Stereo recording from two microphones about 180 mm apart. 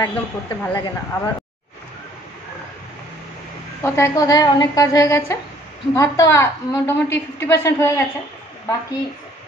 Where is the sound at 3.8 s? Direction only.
15° left (ahead or behind).